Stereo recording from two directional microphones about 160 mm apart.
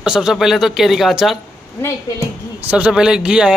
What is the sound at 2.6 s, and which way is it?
Speech, 10° right (ahead or behind).